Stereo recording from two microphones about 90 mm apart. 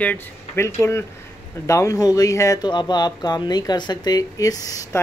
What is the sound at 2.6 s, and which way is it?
Speech, 55° left (ahead or behind).